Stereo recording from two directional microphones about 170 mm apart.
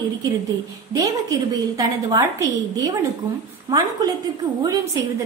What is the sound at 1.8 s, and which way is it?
A woman's voice, 20° right (ahead or behind).